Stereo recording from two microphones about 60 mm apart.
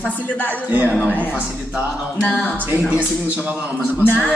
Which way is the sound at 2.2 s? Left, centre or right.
Centre.